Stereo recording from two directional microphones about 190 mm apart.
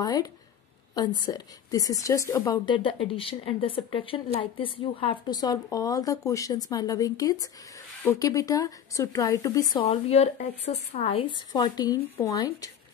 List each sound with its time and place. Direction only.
0.0 s a woman's voice: 20° left (ahead or behind)
9.8 s a woman's voice: 35° left (ahead or behind)